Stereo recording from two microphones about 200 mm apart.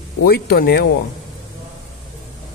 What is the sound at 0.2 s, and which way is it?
Speech, 50° left (ahead or behind).